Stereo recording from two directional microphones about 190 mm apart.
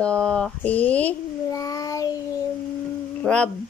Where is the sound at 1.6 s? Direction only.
20° left (ahead or behind).